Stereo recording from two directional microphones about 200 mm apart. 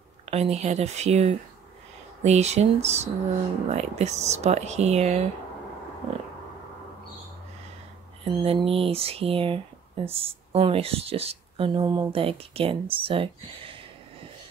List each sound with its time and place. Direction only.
0.2 s speech: 30° right (ahead or behind)
8.2 s speech: 30° right (ahead or behind)